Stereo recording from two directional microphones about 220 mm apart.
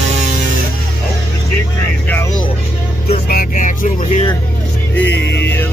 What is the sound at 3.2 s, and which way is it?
Music, 40° left (ahead or behind).